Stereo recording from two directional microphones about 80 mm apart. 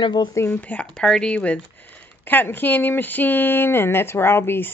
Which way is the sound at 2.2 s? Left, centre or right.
Left.